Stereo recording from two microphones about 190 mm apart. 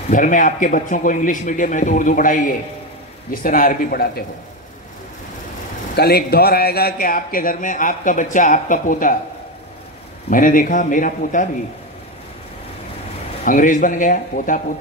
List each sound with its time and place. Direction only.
0.1 s a man's voice: 45° left (ahead or behind)
5.9 s a man's voice: 55° left (ahead or behind)
10.3 s a man's voice: 45° left (ahead or behind)
13.5 s a man's voice: 45° left (ahead or behind)